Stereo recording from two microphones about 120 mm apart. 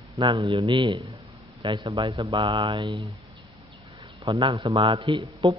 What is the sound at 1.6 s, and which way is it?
Mantra, 35° right (ahead or behind).